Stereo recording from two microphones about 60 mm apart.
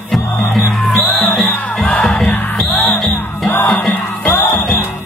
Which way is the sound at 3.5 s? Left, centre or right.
Left.